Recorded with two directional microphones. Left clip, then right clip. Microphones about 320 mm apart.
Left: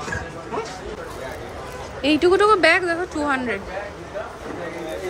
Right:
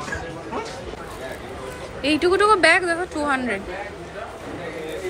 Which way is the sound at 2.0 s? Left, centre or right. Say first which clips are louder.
Left 1 dB; centre.